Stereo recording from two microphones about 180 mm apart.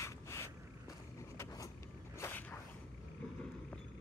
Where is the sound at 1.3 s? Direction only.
15° left (ahead or behind).